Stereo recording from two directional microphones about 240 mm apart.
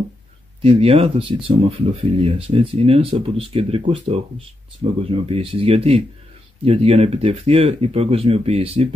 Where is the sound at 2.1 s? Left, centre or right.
Right.